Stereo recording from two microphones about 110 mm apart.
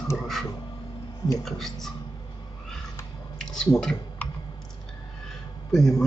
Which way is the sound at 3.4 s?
5° left (ahead or behind).